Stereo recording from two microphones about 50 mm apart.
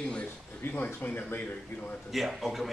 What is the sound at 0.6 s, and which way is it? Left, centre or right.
Speech, left.